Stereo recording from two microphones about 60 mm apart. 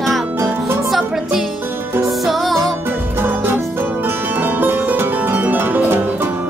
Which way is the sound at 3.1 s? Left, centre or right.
Right.